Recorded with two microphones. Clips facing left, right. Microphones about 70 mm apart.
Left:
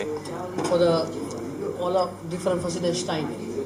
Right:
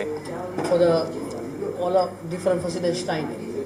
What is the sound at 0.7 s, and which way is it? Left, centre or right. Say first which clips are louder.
Speech: right 2 dB; right.